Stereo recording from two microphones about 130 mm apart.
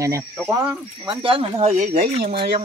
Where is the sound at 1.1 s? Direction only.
40° right (ahead or behind).